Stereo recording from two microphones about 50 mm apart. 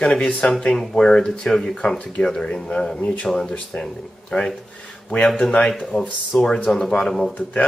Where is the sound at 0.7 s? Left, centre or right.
Centre.